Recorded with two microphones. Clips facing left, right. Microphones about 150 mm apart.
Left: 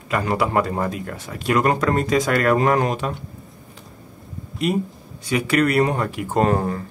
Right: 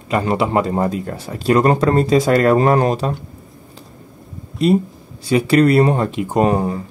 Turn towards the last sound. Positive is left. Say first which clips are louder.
# right 3 dB
turn(degrees=-15)  # may be behind; listen again after turning